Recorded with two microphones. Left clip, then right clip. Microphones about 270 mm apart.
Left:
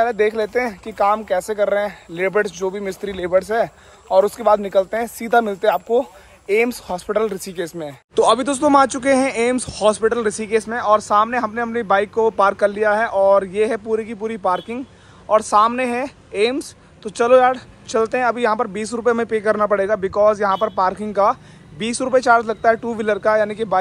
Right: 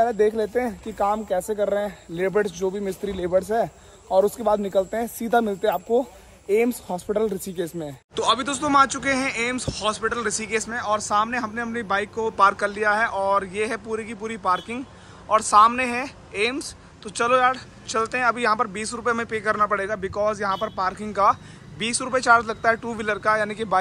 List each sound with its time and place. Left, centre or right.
0.1 s speech: left
8.2 s speech: centre